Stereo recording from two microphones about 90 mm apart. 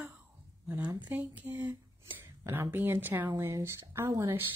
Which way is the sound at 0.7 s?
20° right (ahead or behind).